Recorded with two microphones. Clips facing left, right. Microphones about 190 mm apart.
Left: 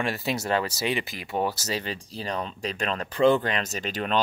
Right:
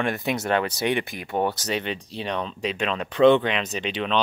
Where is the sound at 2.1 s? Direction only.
Centre (ahead or behind).